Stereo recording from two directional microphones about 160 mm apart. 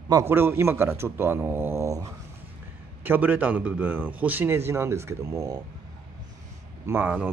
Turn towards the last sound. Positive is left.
turn(degrees=-10)  # may be behind; listen again after turning